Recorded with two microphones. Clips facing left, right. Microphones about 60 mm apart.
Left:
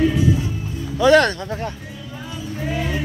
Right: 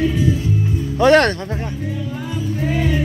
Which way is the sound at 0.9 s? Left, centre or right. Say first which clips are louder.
Right 1 dB; right.